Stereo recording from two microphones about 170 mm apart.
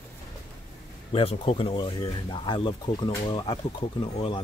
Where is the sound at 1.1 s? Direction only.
35° left (ahead or behind).